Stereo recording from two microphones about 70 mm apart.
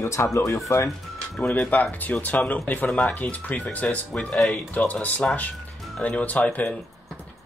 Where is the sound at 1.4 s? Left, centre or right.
Centre.